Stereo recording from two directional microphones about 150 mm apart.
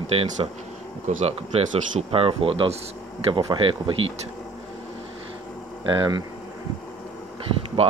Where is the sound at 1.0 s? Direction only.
55° right (ahead or behind).